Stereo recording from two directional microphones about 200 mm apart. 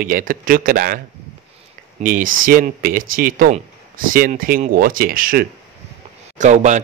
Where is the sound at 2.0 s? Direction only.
40° right (ahead or behind).